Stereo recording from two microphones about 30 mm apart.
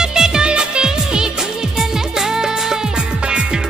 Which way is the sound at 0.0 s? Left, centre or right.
Right.